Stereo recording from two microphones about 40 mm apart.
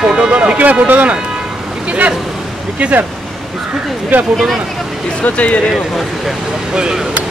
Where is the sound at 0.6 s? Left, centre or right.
Right.